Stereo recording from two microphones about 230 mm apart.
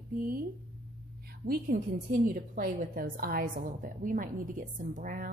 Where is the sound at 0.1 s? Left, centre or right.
Right.